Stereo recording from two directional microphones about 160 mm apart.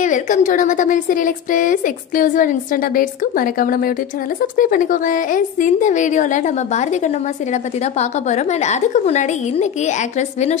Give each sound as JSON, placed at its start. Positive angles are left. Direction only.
{"t": 0.0, "sound": "a woman's voice", "side_deg": 50}